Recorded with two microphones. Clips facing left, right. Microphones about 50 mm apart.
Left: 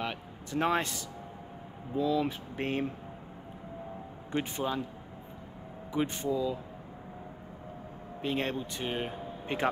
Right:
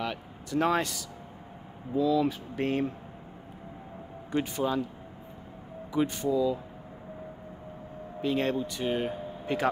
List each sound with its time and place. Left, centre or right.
0.0 s speech: left
4.3 s speech: left
5.9 s speech: left
8.2 s speech: left